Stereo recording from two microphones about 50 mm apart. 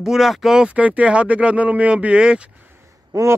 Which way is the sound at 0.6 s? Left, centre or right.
Right.